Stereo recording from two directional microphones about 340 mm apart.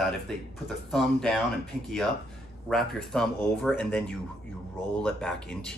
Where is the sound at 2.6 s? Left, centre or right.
Centre.